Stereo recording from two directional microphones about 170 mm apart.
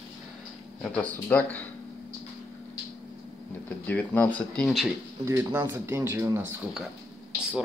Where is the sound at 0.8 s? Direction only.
10° left (ahead or behind).